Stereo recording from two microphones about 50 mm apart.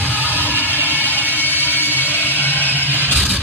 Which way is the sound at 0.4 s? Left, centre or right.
Left.